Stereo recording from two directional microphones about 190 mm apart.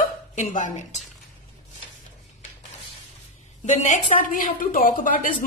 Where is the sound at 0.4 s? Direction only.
40° left (ahead or behind).